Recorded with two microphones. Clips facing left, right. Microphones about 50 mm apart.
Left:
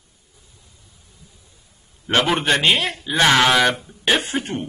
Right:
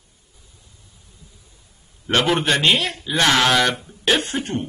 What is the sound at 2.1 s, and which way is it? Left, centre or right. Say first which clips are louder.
Speech: even; centre.